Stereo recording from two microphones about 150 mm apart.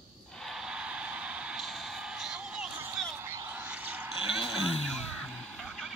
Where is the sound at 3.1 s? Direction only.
15° right (ahead or behind).